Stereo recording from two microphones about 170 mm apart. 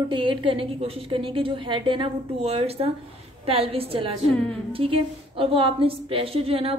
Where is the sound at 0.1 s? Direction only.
30° right (ahead or behind).